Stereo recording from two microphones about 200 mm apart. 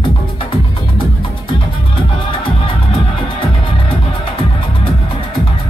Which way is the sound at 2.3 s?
25° left (ahead or behind).